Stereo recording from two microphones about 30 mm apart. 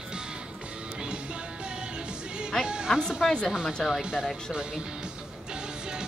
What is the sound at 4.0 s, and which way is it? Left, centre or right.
Speech, right.